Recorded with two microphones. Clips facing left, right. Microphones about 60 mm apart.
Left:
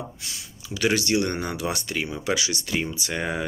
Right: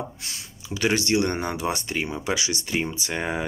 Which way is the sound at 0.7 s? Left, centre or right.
Right.